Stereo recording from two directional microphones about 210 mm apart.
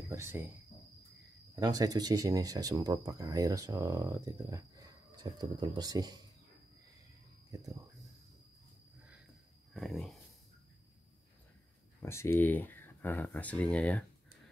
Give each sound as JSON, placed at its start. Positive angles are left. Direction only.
{"t": 0.1, "sound": "speech", "side_deg": -15}
{"t": 1.5, "sound": "speech", "side_deg": -20}
{"t": 9.8, "sound": "speech", "side_deg": 0}
{"t": 12.0, "sound": "speech", "side_deg": 10}